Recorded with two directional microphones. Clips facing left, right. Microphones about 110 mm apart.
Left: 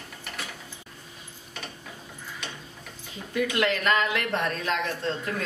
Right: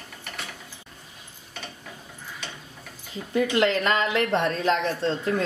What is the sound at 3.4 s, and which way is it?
Speech, 30° right (ahead or behind).